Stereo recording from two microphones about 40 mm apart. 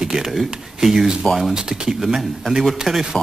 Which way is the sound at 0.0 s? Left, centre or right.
Centre.